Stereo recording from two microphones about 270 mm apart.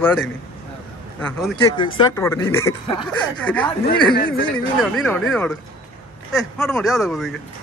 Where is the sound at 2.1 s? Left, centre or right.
Centre.